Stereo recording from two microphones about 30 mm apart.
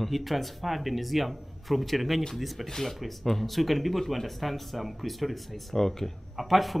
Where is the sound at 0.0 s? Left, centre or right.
Centre.